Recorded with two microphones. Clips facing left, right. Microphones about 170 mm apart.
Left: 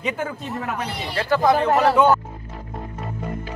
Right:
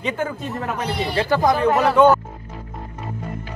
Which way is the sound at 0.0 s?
5° left (ahead or behind).